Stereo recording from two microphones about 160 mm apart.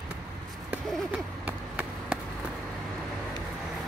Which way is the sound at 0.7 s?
10° right (ahead or behind).